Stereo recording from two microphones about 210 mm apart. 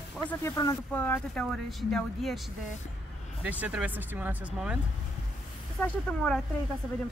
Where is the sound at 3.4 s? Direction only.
5° right (ahead or behind).